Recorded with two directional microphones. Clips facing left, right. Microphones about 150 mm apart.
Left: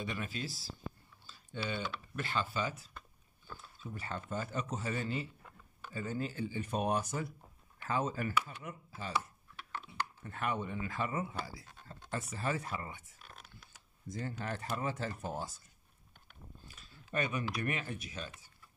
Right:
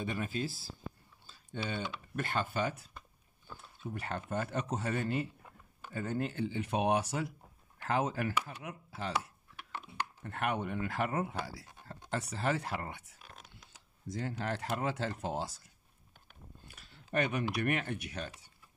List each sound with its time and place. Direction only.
0.0 s speech: 45° right (ahead or behind)
1.2 s typing: 55° right (ahead or behind)
2.1 s speech: 55° right (ahead or behind); by 9.3 s 80° right
10.2 s speech: 65° right (ahead or behind)
13.2 s a sound: 15° right (ahead or behind)
14.0 s speech: 80° right
16.6 s a sound: 65° right (ahead or behind)
17.6 s speech: 60° right (ahead or behind)